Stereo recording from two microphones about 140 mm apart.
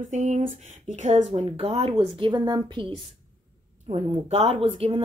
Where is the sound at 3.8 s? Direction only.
50° right (ahead or behind).